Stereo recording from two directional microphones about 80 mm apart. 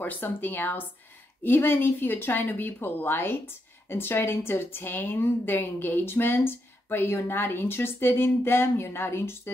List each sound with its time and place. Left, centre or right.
0.0 s speech: left